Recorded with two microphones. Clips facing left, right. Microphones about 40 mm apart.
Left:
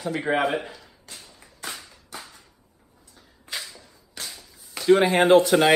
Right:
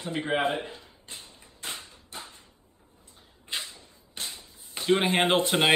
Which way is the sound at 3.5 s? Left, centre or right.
Right.